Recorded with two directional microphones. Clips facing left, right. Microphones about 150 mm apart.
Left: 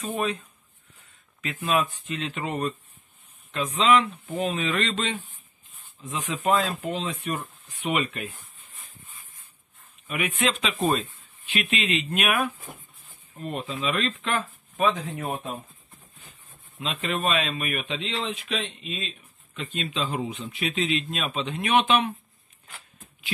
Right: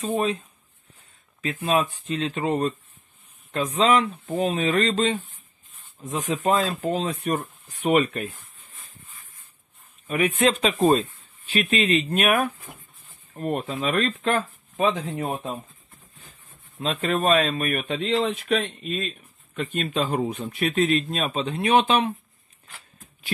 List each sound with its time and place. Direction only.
0.0 s speech: 30° right (ahead or behind)
1.7 s speech: 35° right (ahead or behind)
10.0 s speech: 35° right (ahead or behind)
14.9 s speech: 30° right (ahead or behind)
16.8 s speech: 45° right (ahead or behind)